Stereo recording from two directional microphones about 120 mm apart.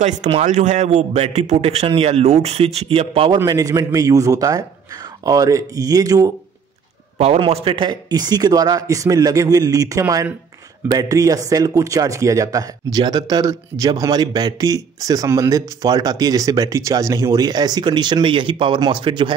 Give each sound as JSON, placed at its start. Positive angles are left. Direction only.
{"t": 0.3, "sound": "a man's voice", "side_deg": -75}
{"t": 3.4, "sound": "a man's voice", "side_deg": -30}
{"t": 7.2, "sound": "a man's voice", "side_deg": -55}
{"t": 8.1, "sound": "a man's voice", "side_deg": -35}